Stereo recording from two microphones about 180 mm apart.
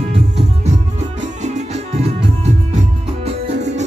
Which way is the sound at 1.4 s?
40° right (ahead or behind).